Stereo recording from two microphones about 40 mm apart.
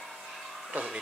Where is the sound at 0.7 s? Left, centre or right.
Right.